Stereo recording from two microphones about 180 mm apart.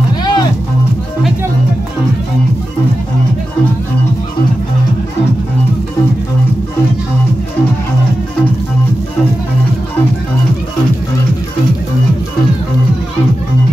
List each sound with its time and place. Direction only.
0.2 s music: 25° left (ahead or behind)